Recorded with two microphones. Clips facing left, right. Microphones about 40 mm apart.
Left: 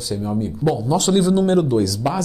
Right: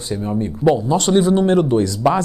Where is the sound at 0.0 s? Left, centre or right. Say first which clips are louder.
Right 1 dB; right.